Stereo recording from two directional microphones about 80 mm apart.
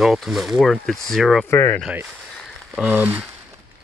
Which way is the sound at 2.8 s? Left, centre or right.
Right.